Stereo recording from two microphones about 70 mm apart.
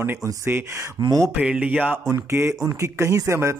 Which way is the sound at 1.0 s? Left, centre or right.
Right.